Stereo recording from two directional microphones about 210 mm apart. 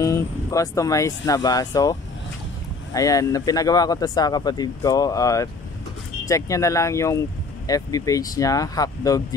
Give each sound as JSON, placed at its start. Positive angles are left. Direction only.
{"t": 0.0, "sound": "speech", "side_deg": 15}